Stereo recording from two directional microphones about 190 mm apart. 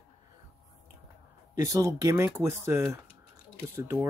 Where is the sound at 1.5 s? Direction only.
15° right (ahead or behind).